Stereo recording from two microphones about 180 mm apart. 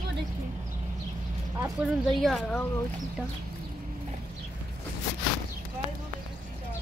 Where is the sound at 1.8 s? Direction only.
5° right (ahead or behind).